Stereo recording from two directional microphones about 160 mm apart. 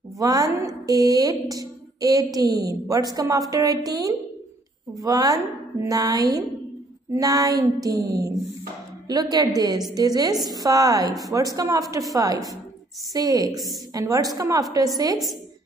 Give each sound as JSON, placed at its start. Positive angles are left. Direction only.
{"t": 0.2, "sound": "a woman's voice", "side_deg": -20}